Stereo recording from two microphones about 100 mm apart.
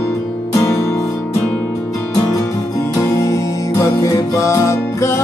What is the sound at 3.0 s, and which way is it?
Music, 30° left (ahead or behind).